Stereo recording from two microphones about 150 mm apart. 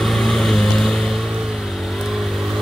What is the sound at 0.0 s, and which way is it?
Vehicle, centre (ahead or behind).